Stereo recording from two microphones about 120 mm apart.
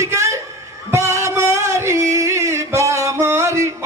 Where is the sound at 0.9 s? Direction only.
25° right (ahead or behind).